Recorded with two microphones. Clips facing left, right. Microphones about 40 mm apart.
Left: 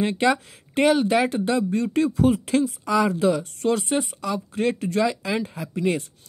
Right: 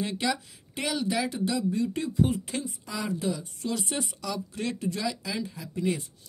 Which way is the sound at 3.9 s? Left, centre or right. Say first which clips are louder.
Left 8 dB; left.